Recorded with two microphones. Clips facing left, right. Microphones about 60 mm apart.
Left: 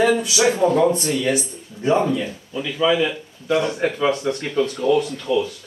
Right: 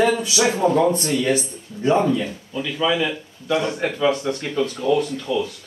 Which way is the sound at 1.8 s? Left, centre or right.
Centre.